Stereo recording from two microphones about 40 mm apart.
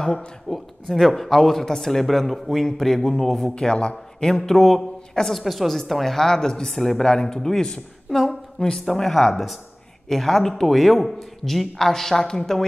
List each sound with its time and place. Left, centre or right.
0.5 s a woman's voice: centre
4.4 s a man's voice: centre
8.9 s a woman's voice: centre